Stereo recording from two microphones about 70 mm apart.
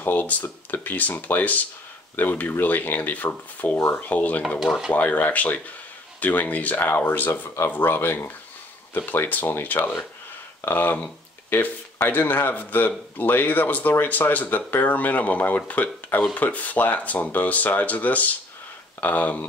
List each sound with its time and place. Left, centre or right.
0.0 s speech: left